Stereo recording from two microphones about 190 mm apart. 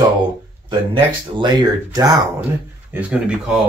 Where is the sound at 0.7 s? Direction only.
25° right (ahead or behind).